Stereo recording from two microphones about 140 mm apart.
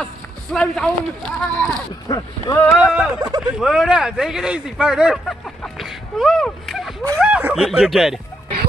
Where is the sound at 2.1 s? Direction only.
25° left (ahead or behind).